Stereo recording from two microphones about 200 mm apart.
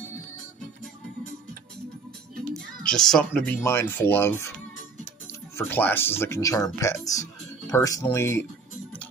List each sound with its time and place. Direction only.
2.8 s speech: 5° left (ahead or behind)
5.6 s speech: 10° left (ahead or behind)